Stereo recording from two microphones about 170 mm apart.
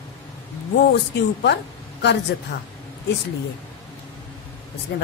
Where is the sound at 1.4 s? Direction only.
90° left.